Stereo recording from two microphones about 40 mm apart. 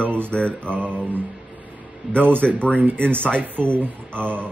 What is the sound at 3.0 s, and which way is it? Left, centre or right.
Speech, left.